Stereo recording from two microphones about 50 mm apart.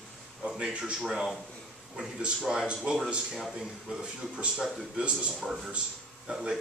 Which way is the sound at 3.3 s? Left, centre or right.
Centre.